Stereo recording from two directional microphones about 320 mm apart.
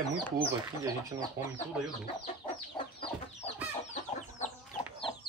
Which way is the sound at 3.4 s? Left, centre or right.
Left.